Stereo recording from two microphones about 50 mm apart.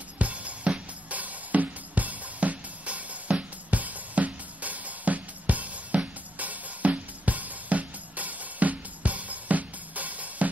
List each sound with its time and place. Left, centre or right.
0.2 s music: right